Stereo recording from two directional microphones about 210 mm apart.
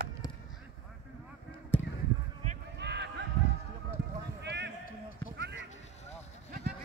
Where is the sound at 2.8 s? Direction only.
55° right (ahead or behind).